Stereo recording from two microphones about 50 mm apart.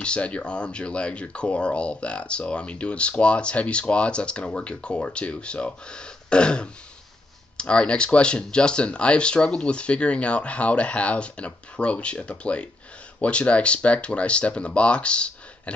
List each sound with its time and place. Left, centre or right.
0.0 s speech: left